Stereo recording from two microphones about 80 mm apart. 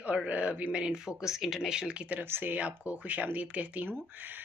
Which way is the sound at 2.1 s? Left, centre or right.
Right.